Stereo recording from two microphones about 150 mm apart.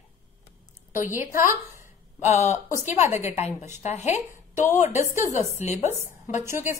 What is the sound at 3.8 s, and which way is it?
Speech, 50° left (ahead or behind).